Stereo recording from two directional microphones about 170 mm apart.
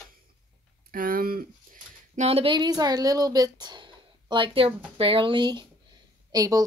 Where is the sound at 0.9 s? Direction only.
55° right (ahead or behind).